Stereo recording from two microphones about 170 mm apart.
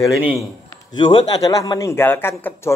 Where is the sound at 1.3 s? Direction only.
20° left (ahead or behind).